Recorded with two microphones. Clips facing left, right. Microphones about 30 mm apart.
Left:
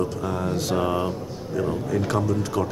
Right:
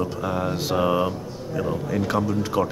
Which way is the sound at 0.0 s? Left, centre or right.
Centre.